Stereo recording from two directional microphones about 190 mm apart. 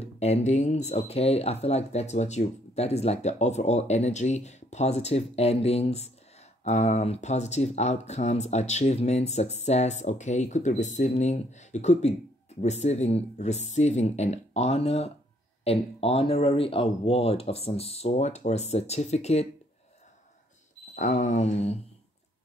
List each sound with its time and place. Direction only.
0.2 s speech: 35° left (ahead or behind)
20.9 s speech: 40° left (ahead or behind)